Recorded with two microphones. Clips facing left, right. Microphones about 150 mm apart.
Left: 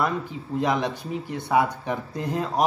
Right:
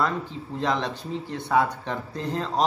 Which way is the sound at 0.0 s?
15° left (ahead or behind).